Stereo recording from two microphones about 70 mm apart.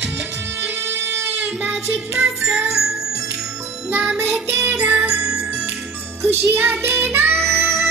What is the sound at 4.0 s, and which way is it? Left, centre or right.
Music, centre.